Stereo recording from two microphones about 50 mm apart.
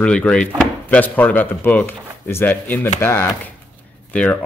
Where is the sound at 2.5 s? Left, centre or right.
Left.